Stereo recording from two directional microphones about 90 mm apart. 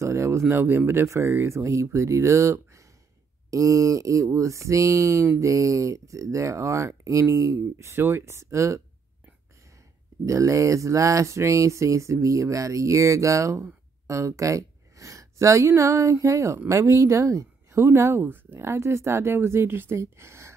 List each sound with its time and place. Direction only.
0.0 s speech: 35° right (ahead or behind)
10.2 s speech: 35° right (ahead or behind)